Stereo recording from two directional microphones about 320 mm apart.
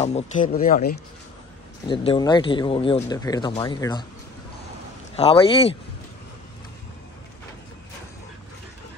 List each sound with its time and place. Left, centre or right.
0.0 s speech: left
1.9 s speech: centre
5.1 s speech: centre